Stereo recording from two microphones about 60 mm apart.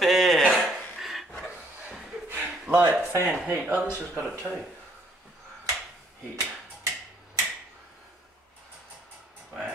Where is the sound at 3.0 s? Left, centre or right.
Right.